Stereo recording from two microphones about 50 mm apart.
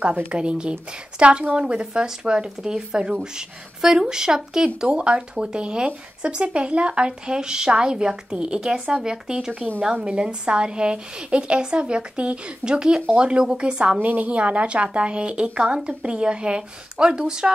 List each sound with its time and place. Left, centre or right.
0.3 s a woman's voice: right
14.0 s a woman's voice: right; by 17.5 s centre